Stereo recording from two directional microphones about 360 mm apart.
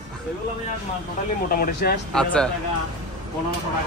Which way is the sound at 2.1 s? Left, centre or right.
Centre.